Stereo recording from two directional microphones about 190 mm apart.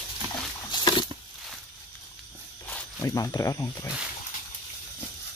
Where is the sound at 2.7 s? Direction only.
15° left (ahead or behind).